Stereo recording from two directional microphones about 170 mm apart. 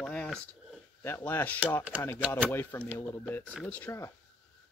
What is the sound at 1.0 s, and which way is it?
Speech, 15° left (ahead or behind).